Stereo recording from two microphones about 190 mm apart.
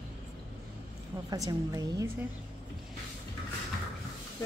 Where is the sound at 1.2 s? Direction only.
15° right (ahead or behind).